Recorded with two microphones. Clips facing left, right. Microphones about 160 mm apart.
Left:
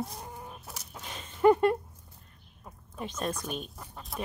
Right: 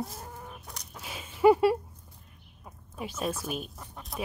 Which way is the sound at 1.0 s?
5° right (ahead or behind).